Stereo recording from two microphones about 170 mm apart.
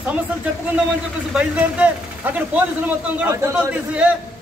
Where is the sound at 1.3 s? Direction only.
5° right (ahead or behind).